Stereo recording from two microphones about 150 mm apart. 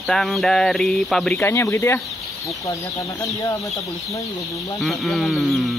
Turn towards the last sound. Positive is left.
turn(degrees=0)  # may be behind; listen again after turning